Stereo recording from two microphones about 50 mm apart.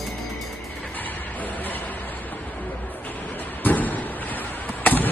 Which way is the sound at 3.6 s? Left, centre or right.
Left.